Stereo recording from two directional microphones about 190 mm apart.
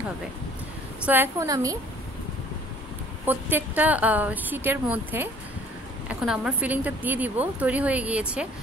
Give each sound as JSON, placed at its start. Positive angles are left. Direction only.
{"t": 1.0, "sound": "a woman's voice", "side_deg": -10}
{"t": 3.3, "sound": "a woman's voice", "side_deg": -10}